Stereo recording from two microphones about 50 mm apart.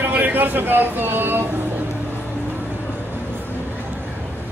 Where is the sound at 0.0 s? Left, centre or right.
Right.